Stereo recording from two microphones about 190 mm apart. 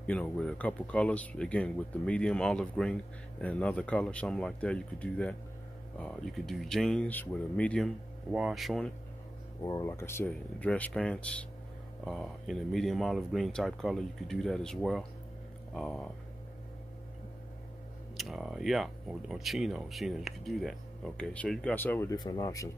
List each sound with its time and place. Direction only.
0.0 s speech: 5° left (ahead or behind)
8.3 s speech: 5° right (ahead or behind)
9.6 s speech: 20° left (ahead or behind); by 16.1 s centre (ahead or behind)
18.1 s speech: centre (ahead or behind)
22.1 s speech: 20° left (ahead or behind)